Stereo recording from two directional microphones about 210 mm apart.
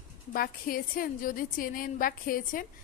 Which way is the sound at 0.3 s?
45° left (ahead or behind).